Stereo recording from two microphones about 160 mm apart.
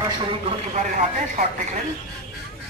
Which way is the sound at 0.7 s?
50° right (ahead or behind).